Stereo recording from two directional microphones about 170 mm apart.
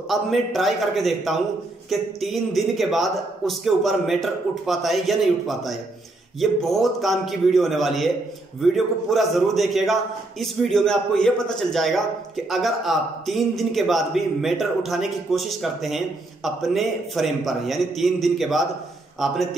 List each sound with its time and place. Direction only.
0.1 s a man's voice: centre (ahead or behind)